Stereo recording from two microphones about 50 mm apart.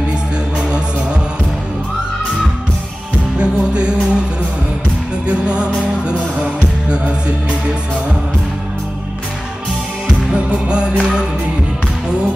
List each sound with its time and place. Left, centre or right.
0.6 s music: centre
3.3 s music: centre
5.2 s music: right
10.0 s music: right